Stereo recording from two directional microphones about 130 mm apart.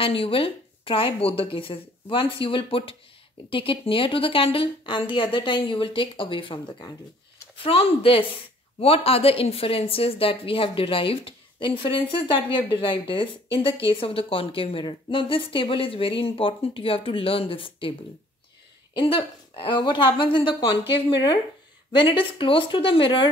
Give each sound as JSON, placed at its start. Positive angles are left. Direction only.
{"t": 0.0, "sound": "a woman's voice", "side_deg": 45}
{"t": 18.9, "sound": "a woman's voice", "side_deg": 40}